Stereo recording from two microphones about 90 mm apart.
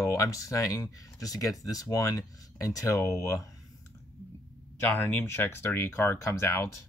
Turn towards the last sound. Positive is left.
turn(degrees=30)  # may be behind; listen again after turning